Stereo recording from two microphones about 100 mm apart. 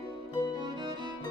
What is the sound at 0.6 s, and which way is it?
Music, 50° right (ahead or behind).